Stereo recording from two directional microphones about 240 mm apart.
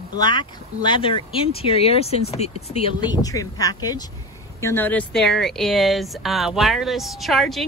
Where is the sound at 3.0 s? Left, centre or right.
Centre.